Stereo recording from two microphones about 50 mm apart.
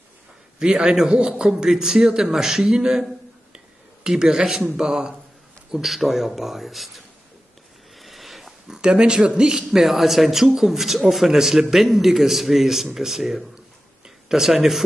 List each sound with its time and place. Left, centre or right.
0.6 s a man's voice: centre
3.5 s a sound: centre
4.7 s a man's voice: centre
8.0 s sniff: centre
8.6 s a man's voice: centre
9.7 s a man's voice: centre